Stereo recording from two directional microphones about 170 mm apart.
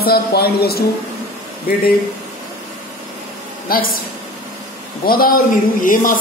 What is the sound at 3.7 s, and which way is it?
Speech, 60° left (ahead or behind).